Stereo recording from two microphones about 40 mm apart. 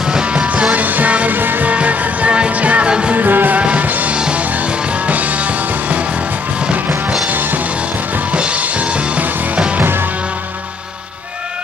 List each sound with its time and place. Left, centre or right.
0.0 s music: right
0.7 s music: right
1.6 s music: right
2.9 s music: right
3.2 s music: right
3.5 s music: right
8.3 s music: right
9.8 s music: right